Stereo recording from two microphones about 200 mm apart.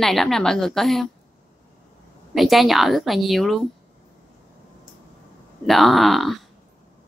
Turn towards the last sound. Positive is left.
turn(degrees=0)  # may be behind; listen again after turning